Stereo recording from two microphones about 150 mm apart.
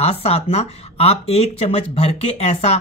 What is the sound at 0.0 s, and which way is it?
Speech, 45° left (ahead or behind).